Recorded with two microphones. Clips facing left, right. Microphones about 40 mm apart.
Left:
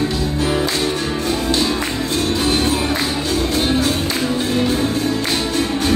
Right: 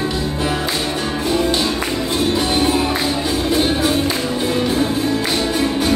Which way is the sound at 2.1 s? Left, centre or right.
Centre.